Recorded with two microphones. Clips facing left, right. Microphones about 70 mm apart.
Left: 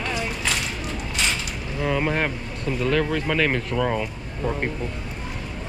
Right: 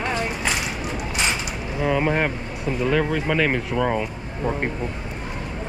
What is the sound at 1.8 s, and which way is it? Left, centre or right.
Speech, centre.